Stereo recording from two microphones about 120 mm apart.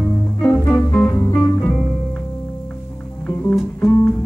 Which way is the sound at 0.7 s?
25° left (ahead or behind).